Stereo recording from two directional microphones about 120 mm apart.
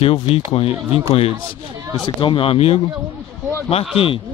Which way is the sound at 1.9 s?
45° left (ahead or behind).